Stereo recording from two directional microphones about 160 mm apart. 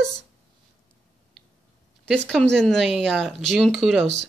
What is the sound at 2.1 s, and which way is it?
Speech, 5° left (ahead or behind).